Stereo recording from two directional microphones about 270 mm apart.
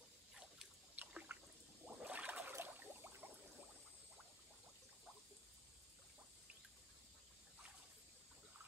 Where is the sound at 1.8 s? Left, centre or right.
Centre.